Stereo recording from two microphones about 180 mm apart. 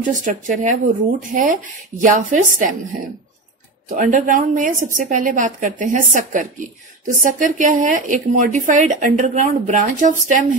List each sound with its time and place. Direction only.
0.0 s a woman's voice: 45° right (ahead or behind)
3.9 s a woman's voice: 45° right (ahead or behind)